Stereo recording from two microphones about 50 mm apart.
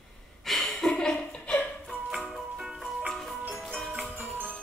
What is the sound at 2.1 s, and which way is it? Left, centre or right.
Music, centre.